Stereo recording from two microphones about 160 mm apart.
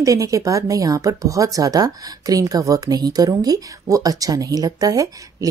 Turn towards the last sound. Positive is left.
turn(degrees=-20)  # may be behind; listen again after turning